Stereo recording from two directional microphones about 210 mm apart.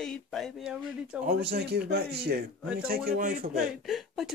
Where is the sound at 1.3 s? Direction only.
50° right (ahead or behind).